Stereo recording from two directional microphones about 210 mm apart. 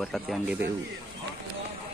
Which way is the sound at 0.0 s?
Centre (ahead or behind).